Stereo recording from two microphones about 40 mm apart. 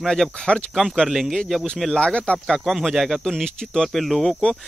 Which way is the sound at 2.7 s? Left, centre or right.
Centre.